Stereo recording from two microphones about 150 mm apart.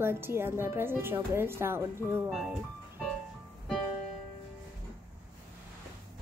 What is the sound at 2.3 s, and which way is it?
Speech, centre (ahead or behind).